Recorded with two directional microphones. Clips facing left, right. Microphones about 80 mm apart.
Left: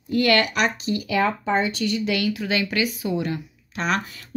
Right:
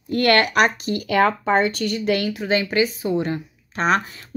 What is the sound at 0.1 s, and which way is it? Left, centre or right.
A woman's voice, right.